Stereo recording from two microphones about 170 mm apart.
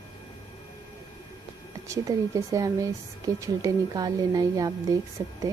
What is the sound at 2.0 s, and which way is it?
A woman's voice, 20° right (ahead or behind).